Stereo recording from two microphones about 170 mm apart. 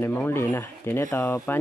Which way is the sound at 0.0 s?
10° left (ahead or behind).